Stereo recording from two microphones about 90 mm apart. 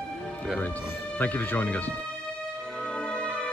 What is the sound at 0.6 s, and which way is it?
Speech, 20° left (ahead or behind).